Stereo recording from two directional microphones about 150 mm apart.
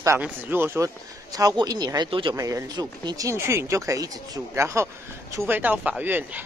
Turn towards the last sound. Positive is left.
turn(degrees=-10)  # may be behind; listen again after turning